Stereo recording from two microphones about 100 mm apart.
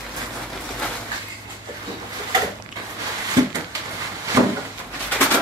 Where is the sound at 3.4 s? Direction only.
35° right (ahead or behind).